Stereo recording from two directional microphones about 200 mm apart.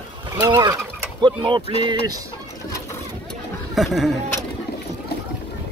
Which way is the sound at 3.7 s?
Centre (ahead or behind).